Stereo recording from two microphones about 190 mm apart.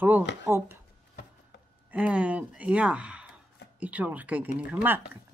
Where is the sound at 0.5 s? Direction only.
10° right (ahead or behind).